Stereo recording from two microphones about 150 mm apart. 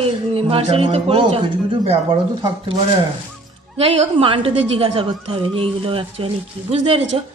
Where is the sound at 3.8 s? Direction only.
35° right (ahead or behind).